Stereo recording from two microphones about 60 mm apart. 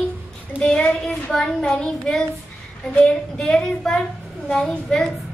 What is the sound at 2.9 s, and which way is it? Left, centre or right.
Speech, left.